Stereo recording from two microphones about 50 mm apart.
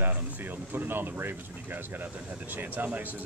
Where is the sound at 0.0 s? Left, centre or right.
Right.